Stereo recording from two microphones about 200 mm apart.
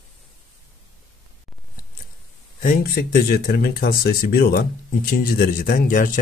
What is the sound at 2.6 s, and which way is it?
Speech, 45° left (ahead or behind).